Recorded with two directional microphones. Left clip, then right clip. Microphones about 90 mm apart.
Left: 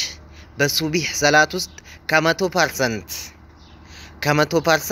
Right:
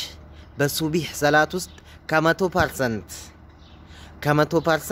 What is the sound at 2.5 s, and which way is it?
Speech, 30° right (ahead or behind).